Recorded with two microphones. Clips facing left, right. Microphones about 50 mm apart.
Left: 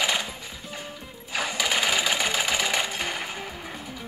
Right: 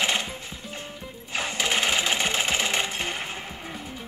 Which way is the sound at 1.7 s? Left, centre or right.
Centre.